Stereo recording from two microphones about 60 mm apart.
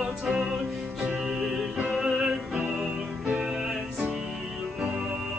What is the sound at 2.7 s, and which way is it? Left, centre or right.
Music, centre.